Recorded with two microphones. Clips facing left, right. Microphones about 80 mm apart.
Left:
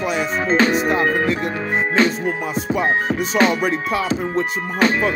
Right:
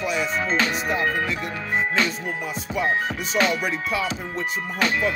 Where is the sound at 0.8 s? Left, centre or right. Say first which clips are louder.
Left 6 dB; left.